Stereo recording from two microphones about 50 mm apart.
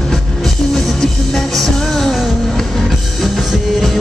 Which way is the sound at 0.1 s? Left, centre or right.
Centre.